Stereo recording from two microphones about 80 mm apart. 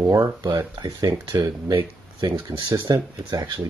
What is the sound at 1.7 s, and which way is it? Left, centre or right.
Speech, right.